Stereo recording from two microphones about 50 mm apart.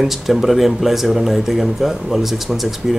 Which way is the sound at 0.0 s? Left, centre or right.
Centre.